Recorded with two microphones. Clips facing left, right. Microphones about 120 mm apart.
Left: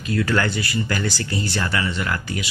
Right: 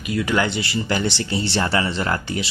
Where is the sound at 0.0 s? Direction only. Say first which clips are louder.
Even; 15° right (ahead or behind).